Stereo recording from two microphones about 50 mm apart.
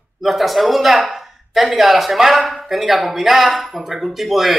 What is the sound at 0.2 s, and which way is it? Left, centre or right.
Speech, centre.